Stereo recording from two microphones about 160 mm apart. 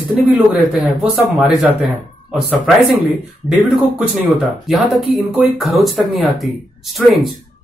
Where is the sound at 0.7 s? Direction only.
Centre (ahead or behind).